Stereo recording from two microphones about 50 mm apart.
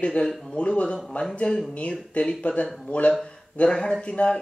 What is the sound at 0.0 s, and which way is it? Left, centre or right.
Speech, left.